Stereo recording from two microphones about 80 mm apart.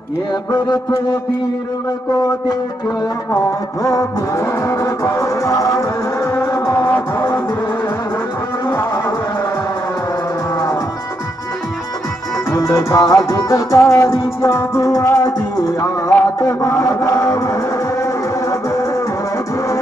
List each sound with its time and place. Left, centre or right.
3.8 s music: left
8.6 s a sound: left
12.4 s music: left
14.9 s music: left